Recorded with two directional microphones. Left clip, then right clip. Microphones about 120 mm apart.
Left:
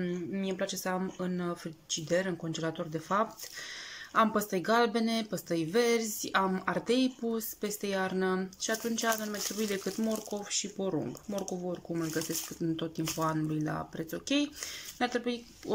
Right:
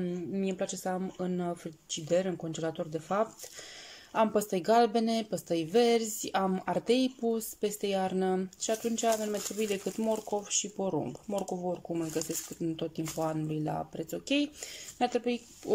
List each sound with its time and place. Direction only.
0.0 s speech: 15° right (ahead or behind)
11.3 s speech: 5° right (ahead or behind)